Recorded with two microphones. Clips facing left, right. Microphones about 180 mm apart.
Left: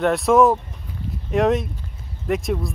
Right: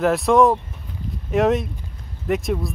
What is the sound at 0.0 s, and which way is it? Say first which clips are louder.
Speech: even; centre (ahead or behind).